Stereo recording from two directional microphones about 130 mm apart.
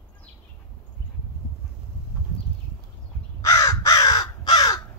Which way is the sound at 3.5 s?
30° left (ahead or behind).